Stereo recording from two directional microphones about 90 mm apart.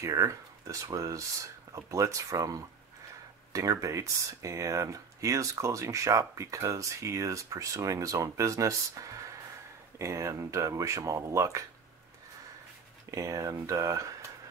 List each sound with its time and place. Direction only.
0.0 s speech: 35° right (ahead or behind)
13.1 s speech: 40° right (ahead or behind)